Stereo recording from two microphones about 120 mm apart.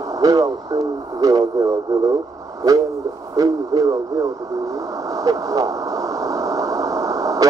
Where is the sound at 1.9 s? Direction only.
30° right (ahead or behind).